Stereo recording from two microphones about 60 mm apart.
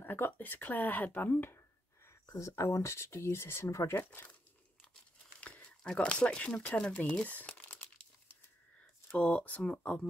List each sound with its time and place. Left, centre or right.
0.0 s speech: left
2.2 s speech: left
5.4 s a sound: left
6.5 s speech: left
9.1 s speech: left